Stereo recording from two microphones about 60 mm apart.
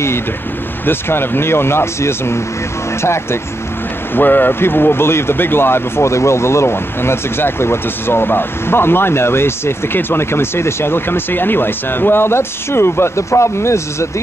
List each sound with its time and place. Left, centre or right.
0.8 s speech: left
4.1 s speech: left